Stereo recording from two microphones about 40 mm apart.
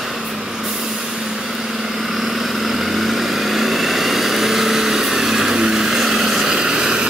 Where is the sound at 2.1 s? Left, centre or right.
Centre.